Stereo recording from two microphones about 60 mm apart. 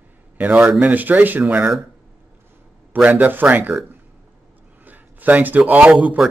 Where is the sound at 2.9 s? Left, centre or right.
Right.